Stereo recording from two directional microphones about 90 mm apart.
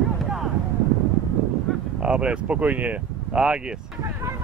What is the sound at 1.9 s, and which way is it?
Speech, 10° right (ahead or behind).